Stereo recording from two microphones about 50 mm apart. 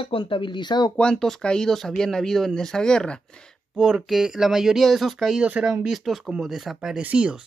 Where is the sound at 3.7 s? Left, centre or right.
Centre.